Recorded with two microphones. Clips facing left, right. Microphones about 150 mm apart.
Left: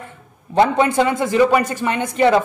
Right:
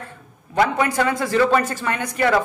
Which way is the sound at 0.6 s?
25° left (ahead or behind).